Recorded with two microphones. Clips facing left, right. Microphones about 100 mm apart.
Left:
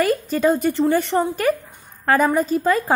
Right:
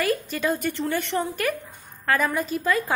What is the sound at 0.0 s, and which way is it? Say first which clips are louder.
A woman's voice: left 6 dB; 35° left (ahead or behind).